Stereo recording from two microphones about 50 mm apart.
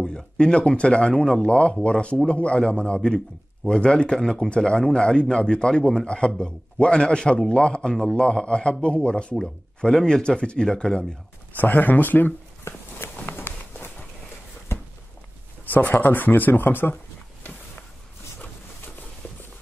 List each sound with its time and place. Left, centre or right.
0.0 s a man's voice: centre
11.5 s speech: left
12.9 s walk: left
15.6 s speech: left